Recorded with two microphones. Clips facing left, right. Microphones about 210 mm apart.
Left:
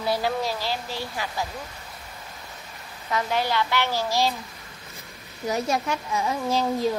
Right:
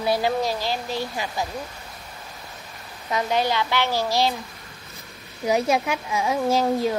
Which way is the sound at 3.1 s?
15° right (ahead or behind).